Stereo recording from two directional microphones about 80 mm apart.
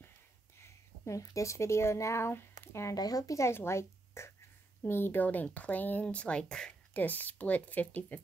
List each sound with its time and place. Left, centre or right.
0.6 s speech: left
2.9 s speech: left; by 6.7 s centre
6.9 s speech: left